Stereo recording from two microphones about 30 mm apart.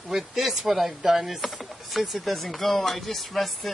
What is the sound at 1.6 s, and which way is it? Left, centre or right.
Speech, centre.